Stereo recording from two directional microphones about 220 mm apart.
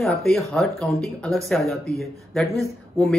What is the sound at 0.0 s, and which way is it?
Speech, centre (ahead or behind).